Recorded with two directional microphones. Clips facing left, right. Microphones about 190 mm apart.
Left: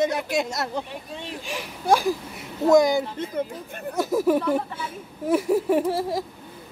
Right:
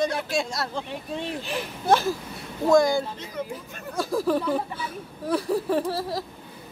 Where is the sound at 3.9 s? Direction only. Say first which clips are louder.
Left 3 dB; 20° left (ahead or behind).